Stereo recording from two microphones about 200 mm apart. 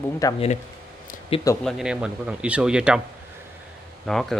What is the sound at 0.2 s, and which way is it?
Speech, 15° left (ahead or behind).